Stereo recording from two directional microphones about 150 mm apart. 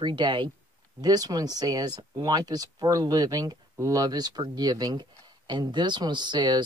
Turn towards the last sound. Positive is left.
turn(degrees=-30)  # may be behind; listen again after turning